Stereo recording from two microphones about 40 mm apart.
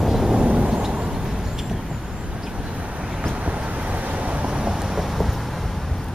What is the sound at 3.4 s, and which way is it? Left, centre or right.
Vehicle, right.